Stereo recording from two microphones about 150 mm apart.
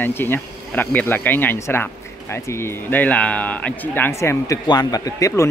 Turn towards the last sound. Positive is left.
turn(degrees=20)  # may be behind; listen again after turning